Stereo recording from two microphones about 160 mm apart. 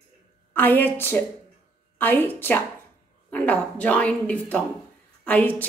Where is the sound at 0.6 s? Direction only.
10° left (ahead or behind).